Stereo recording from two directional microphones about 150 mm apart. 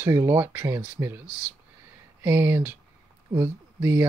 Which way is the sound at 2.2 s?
15° right (ahead or behind).